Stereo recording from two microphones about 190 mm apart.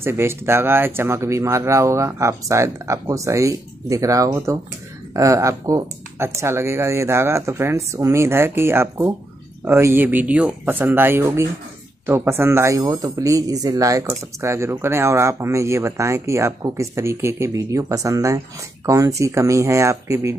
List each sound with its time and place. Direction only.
0.0 s speech: 15° right (ahead or behind)